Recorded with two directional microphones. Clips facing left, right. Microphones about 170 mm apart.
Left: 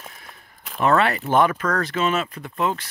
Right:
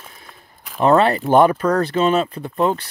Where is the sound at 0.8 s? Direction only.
30° right (ahead or behind).